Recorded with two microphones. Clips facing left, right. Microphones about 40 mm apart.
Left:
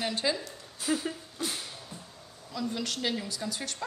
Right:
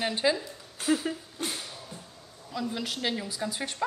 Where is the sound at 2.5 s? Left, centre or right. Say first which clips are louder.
Right 1 dB; centre.